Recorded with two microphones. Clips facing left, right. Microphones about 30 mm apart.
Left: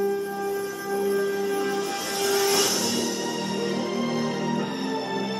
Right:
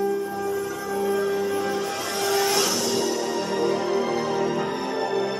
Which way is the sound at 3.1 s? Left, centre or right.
Right.